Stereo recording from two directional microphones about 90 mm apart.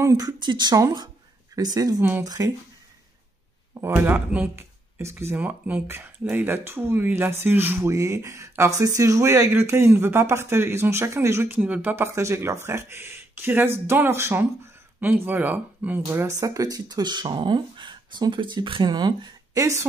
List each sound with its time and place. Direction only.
0.0 s speech: 40° right (ahead or behind)
0.4 s speech: 55° right (ahead or behind)
1.5 s speech: 45° right (ahead or behind)
3.8 s speech: 25° right (ahead or behind)
7.9 s speech: 40° right (ahead or behind); by 12.1 s 20° right (ahead or behind)
12.2 s speech: 35° right (ahead or behind); by 16.0 s 20° right (ahead or behind)
16.1 s speech: 35° right (ahead or behind); by 18.9 s 70° right (ahead or behind)
18.9 s speech: 50° right (ahead or behind)
19.6 s speech: 35° right (ahead or behind)